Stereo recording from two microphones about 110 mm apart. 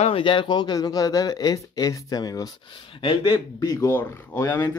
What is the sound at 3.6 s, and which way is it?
Speech, 35° left (ahead or behind).